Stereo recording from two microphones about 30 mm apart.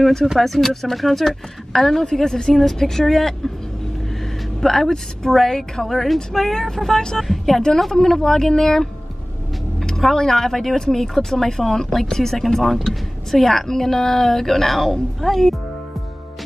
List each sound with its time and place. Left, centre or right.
0.4 s speech: centre
4.6 s speech: centre
5.9 s speech: centre
7.2 s speech: centre
7.9 s speech: centre
9.8 s vehicle: centre
10.1 s speech: centre